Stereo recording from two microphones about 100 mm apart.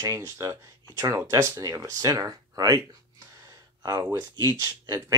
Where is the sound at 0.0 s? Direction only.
30° right (ahead or behind).